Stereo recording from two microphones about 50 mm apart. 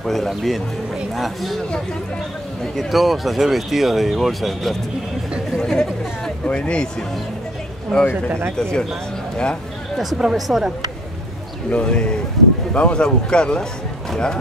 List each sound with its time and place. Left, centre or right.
0.0 s speech: centre
2.7 s speech: centre
5.6 s chatter: centre
6.4 s speech: left
7.9 s speech: centre
10.1 s speech: centre
11.7 s speech: left